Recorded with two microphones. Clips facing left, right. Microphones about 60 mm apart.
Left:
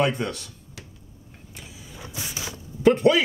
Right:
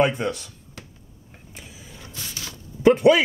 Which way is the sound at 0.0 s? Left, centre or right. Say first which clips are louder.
Right 3 dB; centre.